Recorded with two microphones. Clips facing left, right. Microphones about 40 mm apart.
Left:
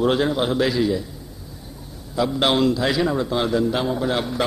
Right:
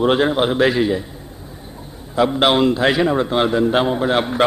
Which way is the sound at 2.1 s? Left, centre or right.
Right.